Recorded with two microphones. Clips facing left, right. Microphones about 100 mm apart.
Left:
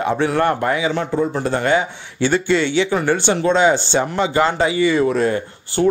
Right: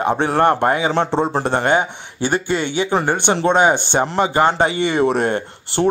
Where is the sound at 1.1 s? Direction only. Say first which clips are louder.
Right 1 dB; 85° right.